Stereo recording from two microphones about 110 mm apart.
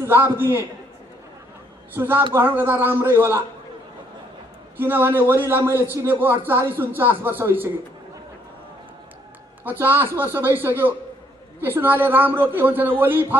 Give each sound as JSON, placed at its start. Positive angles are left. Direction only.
{"t": 0.0, "sound": "a man's voice", "side_deg": -20}
{"t": 2.0, "sound": "a man's voice", "side_deg": -20}
{"t": 4.7, "sound": "a man's voice", "side_deg": -20}
{"t": 9.7, "sound": "a man's voice", "side_deg": -20}